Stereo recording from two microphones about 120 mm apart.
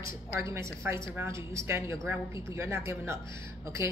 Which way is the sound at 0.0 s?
25° right (ahead or behind).